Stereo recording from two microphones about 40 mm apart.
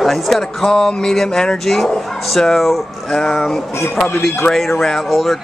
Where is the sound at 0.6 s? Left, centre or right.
Centre.